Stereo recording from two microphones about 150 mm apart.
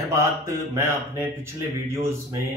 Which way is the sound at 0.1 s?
20° right (ahead or behind).